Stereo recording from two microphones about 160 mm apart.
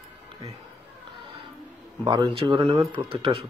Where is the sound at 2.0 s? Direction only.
30° right (ahead or behind).